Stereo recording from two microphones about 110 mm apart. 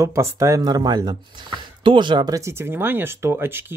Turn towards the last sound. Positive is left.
turn(degrees=-20)  # may be behind; listen again after turning